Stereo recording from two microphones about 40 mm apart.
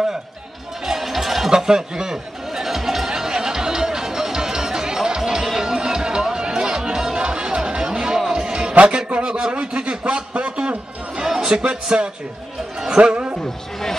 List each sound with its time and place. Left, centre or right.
0.8 s music: centre
8.7 s a sound: right
11.4 s speech: right
12.9 s music: right